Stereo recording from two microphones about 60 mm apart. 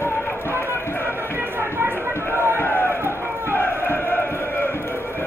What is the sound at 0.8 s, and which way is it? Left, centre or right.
Music, left.